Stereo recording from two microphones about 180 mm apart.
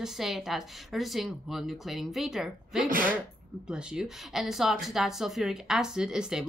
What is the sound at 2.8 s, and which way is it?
Speech, 50° right (ahead or behind).